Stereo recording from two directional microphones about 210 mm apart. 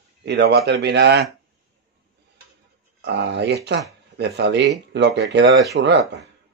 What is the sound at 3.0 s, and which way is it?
Speech, 55° right (ahead or behind).